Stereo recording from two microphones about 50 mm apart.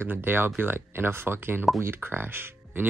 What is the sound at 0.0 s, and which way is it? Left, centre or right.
Speech, right.